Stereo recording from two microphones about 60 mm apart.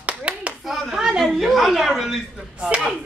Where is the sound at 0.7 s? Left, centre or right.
Centre.